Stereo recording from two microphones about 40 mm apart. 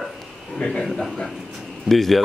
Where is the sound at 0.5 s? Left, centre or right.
Left.